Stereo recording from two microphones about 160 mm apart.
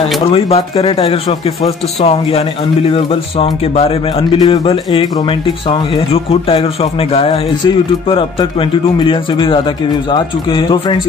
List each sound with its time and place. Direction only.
0.3 s speech: 35° left (ahead or behind)